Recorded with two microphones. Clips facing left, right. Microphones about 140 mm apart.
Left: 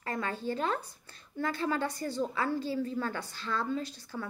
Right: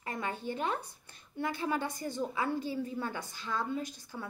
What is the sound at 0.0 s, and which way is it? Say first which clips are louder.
A woman's voice: left 2 dB; 20° right (ahead or behind).